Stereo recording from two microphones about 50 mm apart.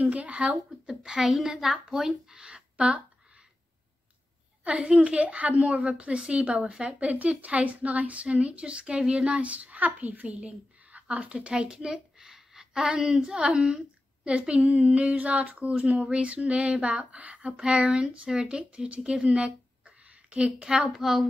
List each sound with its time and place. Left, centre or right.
0.0 s a woman's voice: right
0.8 s a woman's voice: centre
4.6 s a woman's voice: right
20.9 s a woman's voice: centre